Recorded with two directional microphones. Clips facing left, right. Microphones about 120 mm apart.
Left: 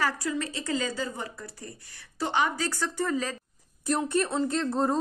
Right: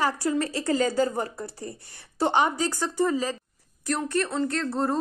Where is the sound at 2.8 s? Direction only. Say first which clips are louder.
Right 4 dB; 15° right (ahead or behind).